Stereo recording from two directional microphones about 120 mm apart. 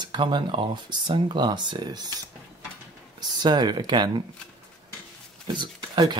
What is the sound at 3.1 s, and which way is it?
Speech, 35° right (ahead or behind).